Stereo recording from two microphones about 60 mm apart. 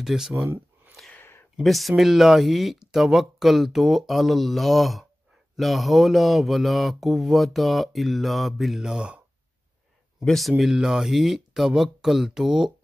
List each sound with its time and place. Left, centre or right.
0.0 s speech: centre
1.1 s a sound: left
1.6 s mantra: centre
10.2 s mantra: centre